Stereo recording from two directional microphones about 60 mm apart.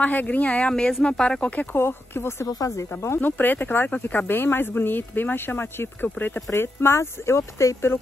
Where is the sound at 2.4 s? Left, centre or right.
Left.